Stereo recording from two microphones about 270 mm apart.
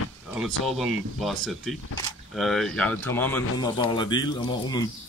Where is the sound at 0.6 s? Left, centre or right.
Centre.